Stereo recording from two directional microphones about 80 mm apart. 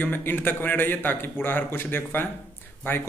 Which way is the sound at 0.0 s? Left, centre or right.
Left.